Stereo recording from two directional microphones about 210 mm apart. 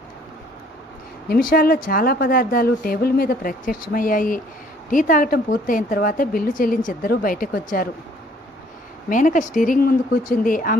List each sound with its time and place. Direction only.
1.3 s a woman's voice: 45° left (ahead or behind)
9.1 s a woman's voice: 40° left (ahead or behind)